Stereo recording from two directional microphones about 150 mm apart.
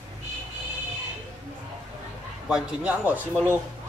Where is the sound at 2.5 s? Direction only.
5° right (ahead or behind).